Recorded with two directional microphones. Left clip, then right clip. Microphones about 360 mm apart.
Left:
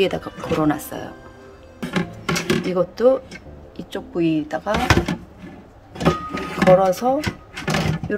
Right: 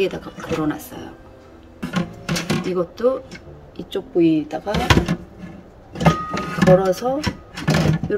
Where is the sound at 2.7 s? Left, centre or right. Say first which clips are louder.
Left 3 dB; centre.